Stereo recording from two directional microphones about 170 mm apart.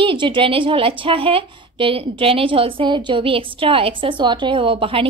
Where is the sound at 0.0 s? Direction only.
30° right (ahead or behind).